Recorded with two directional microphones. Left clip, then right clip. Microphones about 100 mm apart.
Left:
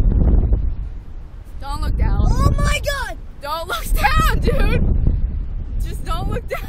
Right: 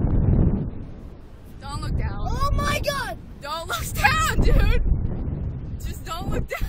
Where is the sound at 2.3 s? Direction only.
20° right (ahead or behind).